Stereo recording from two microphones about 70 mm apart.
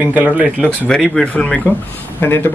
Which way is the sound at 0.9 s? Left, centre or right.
Centre.